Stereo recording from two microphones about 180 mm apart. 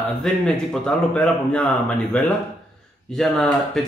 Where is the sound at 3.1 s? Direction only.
Centre (ahead or behind).